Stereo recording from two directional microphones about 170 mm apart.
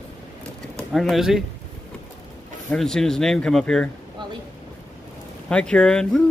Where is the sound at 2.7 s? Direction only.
5° left (ahead or behind).